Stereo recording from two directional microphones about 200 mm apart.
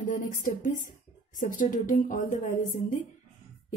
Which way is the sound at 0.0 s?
40° left (ahead or behind).